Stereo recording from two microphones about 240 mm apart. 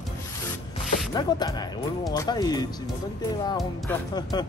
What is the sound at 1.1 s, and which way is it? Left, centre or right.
Speech, centre.